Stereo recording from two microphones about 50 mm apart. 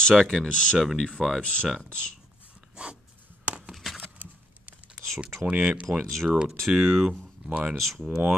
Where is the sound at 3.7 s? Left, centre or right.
Centre.